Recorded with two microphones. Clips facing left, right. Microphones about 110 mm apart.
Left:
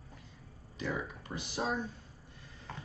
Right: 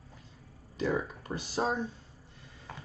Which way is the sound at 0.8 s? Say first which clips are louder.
Right 6 dB; 40° right (ahead or behind).